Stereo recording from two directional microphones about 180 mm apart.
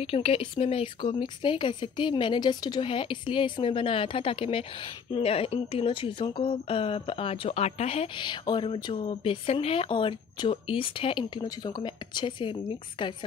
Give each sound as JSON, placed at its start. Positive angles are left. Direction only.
{"t": 0.0, "sound": "speech", "side_deg": 30}